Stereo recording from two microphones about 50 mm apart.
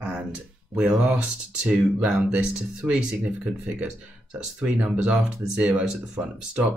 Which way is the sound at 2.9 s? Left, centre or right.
Centre.